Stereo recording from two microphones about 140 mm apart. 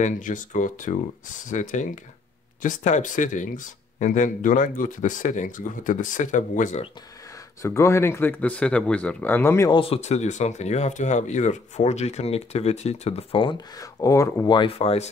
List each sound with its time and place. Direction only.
0.0 s speech: 65° left (ahead or behind)
7.6 s speech: 20° left (ahead or behind)
9.7 s speech: 40° left (ahead or behind)